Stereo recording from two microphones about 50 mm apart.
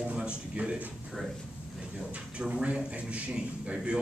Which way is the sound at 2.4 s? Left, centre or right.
Right.